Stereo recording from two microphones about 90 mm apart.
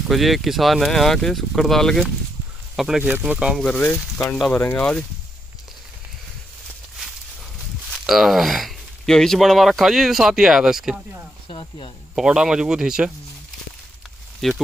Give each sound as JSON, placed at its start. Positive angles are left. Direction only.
{"t": 0.1, "sound": "speech", "side_deg": 0}
{"t": 3.0, "sound": "speech", "side_deg": -20}
{"t": 3.5, "sound": "speech", "side_deg": 10}
{"t": 8.1, "sound": "speech", "side_deg": 0}
{"t": 11.4, "sound": "speech", "side_deg": 80}
{"t": 12.2, "sound": "speech", "side_deg": -10}
{"t": 14.4, "sound": "speech", "side_deg": 5}